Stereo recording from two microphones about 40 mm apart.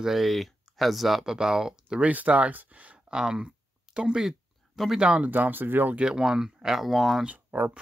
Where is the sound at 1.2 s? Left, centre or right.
Centre.